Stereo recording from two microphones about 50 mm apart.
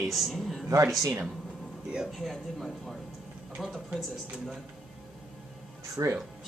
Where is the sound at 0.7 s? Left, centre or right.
Right.